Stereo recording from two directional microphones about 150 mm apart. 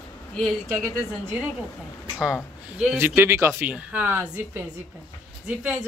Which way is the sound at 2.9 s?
15° right (ahead or behind).